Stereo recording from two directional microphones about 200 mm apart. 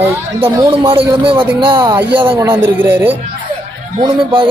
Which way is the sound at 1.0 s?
25° right (ahead or behind).